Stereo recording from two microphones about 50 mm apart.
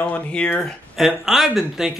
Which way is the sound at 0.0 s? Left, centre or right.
Left.